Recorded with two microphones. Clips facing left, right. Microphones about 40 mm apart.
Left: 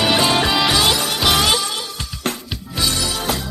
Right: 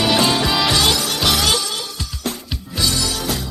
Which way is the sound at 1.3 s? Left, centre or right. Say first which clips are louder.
Left 2 dB; left.